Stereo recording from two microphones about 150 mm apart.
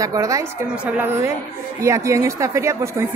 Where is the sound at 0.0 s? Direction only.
20° right (ahead or behind).